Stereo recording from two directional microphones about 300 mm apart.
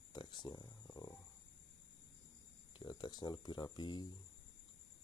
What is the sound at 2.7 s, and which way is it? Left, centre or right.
Speech, centre.